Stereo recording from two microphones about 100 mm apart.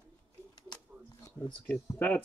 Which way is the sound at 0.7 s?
45° left (ahead or behind).